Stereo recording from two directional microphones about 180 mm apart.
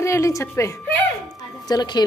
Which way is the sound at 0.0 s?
15° left (ahead or behind).